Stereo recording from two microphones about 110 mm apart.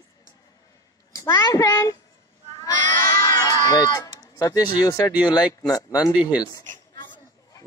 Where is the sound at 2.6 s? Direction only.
35° left (ahead or behind).